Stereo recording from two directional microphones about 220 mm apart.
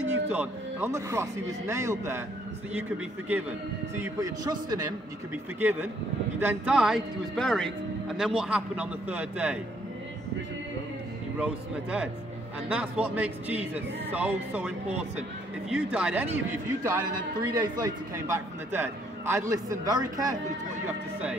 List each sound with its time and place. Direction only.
0.3 s a man's voice: 10° right (ahead or behind)
3.9 s a man's voice: 15° right (ahead or behind)
11.3 s a man's voice: 5° right (ahead or behind)
20.8 s speech: 5° right (ahead or behind)